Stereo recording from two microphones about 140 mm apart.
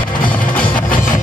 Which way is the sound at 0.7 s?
70° left (ahead or behind).